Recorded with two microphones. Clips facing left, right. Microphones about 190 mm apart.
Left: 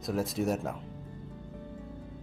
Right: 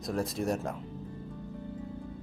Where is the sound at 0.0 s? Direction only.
Centre (ahead or behind).